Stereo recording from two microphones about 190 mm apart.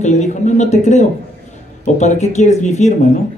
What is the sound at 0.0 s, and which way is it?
Speech, 40° left (ahead or behind).